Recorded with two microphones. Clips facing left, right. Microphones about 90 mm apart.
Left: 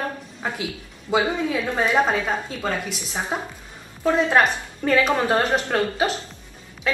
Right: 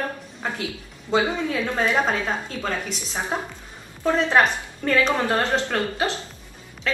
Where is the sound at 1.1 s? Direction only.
15° left (ahead or behind).